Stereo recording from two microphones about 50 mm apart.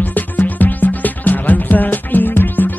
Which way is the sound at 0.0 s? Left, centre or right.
Left.